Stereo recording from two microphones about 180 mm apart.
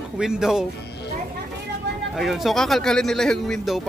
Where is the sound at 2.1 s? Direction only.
Centre (ahead or behind).